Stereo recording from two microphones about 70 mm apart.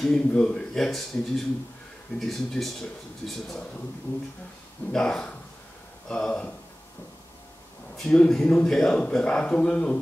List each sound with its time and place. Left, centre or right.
0.0 s a man's voice: centre
4.9 s a man's voice: centre
8.0 s a man's voice: centre